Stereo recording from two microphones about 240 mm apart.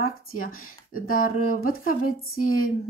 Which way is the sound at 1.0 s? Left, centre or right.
Left.